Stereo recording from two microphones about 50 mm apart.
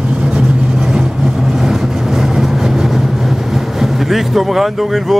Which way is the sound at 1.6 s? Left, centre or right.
Centre.